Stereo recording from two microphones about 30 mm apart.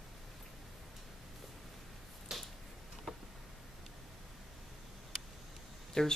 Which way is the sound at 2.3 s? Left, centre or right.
Centre.